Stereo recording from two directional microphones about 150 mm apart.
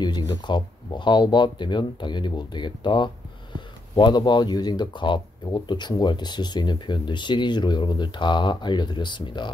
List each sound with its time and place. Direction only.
0.0 s speech: 30° left (ahead or behind)